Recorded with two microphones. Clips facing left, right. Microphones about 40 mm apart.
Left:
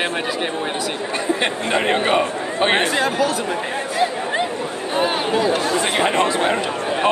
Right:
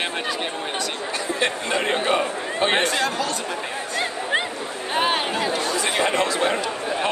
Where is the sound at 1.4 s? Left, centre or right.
Left.